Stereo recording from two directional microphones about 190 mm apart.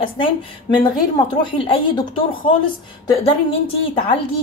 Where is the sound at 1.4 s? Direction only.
25° left (ahead or behind).